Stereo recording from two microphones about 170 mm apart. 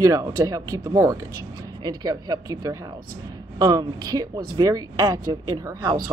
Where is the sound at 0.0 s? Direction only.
20° right (ahead or behind).